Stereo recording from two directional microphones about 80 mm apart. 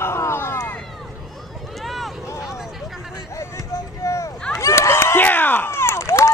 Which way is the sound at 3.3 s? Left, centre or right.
Left.